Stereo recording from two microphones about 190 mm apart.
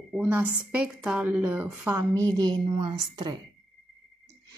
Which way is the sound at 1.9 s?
20° right (ahead or behind).